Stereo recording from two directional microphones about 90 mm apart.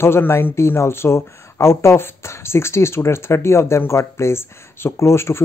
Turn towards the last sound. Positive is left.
turn(degrees=30)  # may be behind; listen again after turning